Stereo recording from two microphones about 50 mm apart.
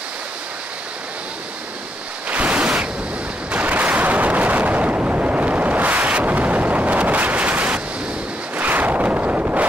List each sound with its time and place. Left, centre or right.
2.2 s a sound: right
3.5 s artillery fire: right
8.5 s wind noise: right